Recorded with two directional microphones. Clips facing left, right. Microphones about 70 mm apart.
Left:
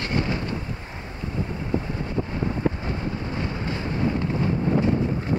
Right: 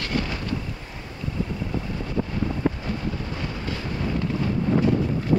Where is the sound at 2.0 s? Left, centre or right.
Left.